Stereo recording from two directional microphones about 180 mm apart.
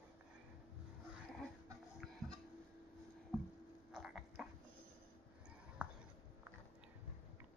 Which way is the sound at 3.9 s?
Centre (ahead or behind).